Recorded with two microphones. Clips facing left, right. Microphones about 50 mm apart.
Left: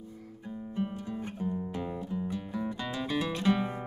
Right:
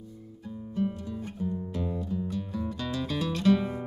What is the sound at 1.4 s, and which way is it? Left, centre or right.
Music, left.